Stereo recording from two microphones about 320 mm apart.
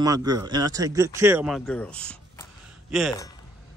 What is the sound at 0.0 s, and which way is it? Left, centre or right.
Speech, centre.